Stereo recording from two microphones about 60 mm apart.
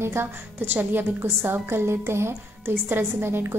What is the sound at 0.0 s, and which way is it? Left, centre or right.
A woman's voice, right.